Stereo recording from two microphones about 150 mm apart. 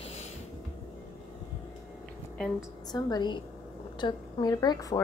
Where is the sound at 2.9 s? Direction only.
25° left (ahead or behind).